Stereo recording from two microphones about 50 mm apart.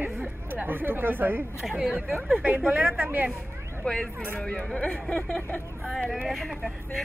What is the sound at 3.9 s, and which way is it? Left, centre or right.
Speech, centre.